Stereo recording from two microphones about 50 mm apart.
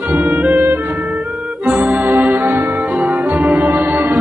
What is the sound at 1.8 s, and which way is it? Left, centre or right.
Music, right.